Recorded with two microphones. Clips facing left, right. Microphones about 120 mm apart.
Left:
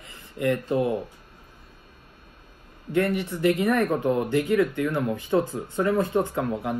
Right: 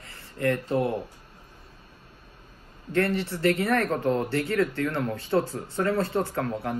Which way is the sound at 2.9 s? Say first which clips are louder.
Left 1 dB; 15° left (ahead or behind).